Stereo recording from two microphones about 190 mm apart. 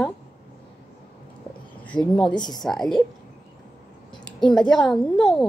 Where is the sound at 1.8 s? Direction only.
5° left (ahead or behind).